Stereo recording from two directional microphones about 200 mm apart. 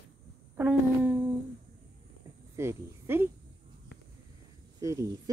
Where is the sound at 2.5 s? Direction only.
10° right (ahead or behind).